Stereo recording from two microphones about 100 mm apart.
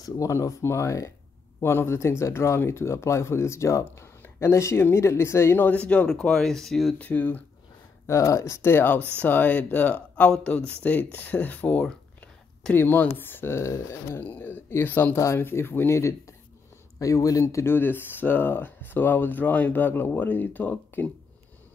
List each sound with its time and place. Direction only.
0.0 s speech: 30° left (ahead or behind); by 7.0 s 5° left (ahead or behind)
7.0 s speech: 15° left (ahead or behind)
8.1 s speech: 30° left (ahead or behind)
14.2 s speech: 15° left (ahead or behind)